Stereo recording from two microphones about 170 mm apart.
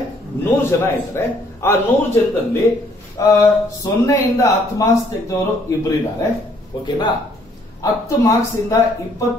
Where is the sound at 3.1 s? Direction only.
20° left (ahead or behind).